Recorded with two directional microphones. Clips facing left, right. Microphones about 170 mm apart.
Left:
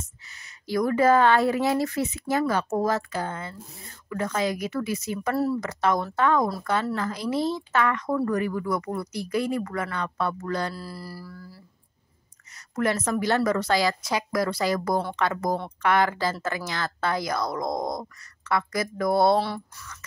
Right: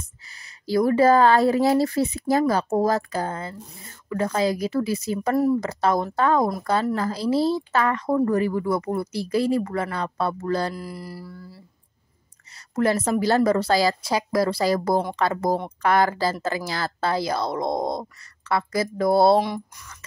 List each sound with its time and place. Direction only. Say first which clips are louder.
0.3 s speech: right 5 dB; 30° right (ahead or behind)
5.3 s speech: right 5 dB; 15° right (ahead or behind)
5.6 s speech: right 2 dB; 30° right (ahead or behind)
10.7 s speech: right 3 dB; 15° right (ahead or behind)
12.7 s speech: right 4 dB; 30° right (ahead or behind)
19.4 s speech: right 3 dB; 15° right (ahead or behind)